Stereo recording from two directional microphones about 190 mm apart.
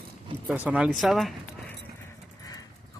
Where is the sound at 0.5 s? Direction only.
5° right (ahead or behind).